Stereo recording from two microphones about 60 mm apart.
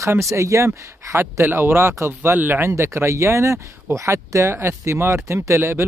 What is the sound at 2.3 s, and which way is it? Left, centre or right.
Speech, right.